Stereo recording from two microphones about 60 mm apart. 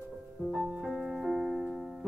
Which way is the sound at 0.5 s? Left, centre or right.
Centre.